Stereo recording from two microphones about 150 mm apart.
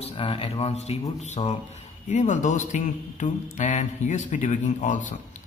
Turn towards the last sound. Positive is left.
turn(degrees=60)  # may be behind; listen again after turning